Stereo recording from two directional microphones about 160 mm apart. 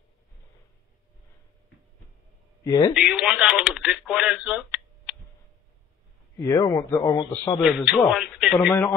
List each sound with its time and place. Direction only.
2.6 s speech: 20° left (ahead or behind)
2.9 s speech: 5° right (ahead or behind)
6.3 s a man's voice: 20° left (ahead or behind)
7.6 s speech: 5° right (ahead or behind)